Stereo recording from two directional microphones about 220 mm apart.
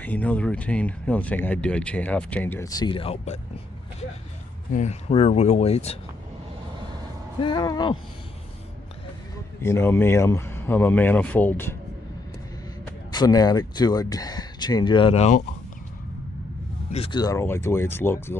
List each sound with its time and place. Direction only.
0.0 s speech: 5° left (ahead or behind); by 3.3 s 25° left (ahead or behind)
4.6 s speech: 35° left (ahead or behind)
7.3 s speech: 20° left (ahead or behind)
9.6 s speech: 10° left (ahead or behind)
13.1 s speech: 15° left (ahead or behind)
16.9 s speech: 25° left (ahead or behind)